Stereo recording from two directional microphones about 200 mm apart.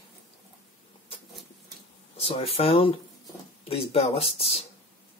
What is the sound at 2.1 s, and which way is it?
Speech, 30° left (ahead or behind).